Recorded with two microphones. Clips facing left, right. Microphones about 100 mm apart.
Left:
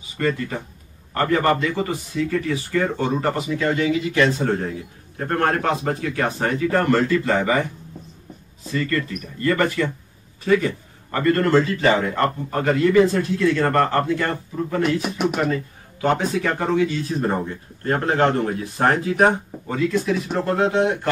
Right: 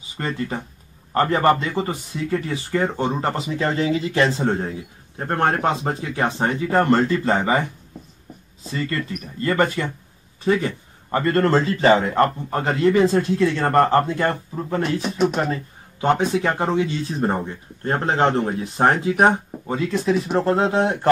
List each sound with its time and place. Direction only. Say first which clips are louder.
1.1 s speech: right 2 dB; 25° right (ahead or behind)
8.7 s speech: left 2 dB; 25° right (ahead or behind)